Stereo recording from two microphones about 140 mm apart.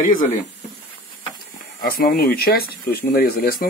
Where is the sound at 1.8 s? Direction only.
90° left.